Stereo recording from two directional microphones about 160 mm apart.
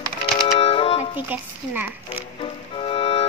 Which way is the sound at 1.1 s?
10° right (ahead or behind).